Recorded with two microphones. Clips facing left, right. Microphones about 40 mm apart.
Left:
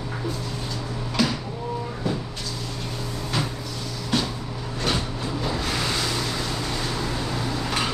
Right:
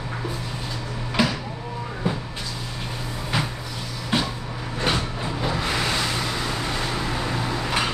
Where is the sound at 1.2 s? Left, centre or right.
Right.